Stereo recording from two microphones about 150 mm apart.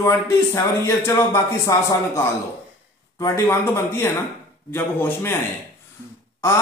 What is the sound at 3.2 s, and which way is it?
A man's voice, 20° left (ahead or behind).